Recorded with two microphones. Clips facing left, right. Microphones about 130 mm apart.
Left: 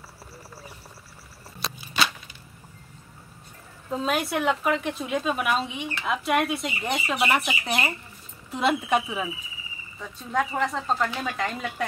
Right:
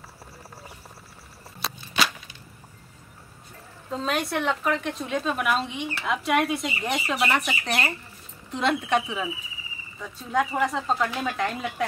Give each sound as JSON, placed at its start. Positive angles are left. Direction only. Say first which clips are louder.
{"t": 3.9, "sound": "speech", "louder": "left 1 dB", "side_deg": 5}